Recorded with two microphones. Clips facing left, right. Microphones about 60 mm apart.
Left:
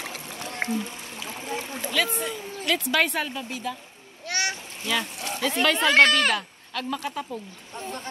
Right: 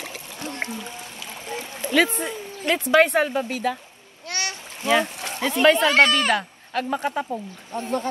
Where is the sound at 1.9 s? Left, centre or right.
Right.